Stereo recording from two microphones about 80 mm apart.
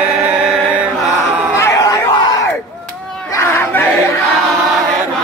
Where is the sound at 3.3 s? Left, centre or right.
Left.